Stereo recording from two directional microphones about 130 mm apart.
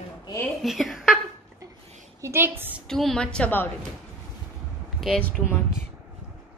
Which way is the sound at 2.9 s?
5° left (ahead or behind).